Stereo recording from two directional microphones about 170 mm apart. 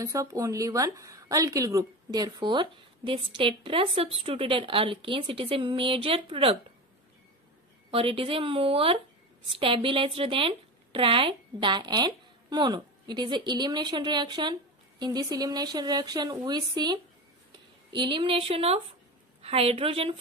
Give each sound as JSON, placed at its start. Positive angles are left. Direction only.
{"t": 0.0, "sound": "speech", "side_deg": -20}
{"t": 7.9, "sound": "a woman's voice", "side_deg": -35}